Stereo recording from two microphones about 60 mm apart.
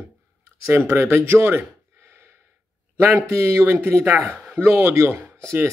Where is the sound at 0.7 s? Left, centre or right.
Right.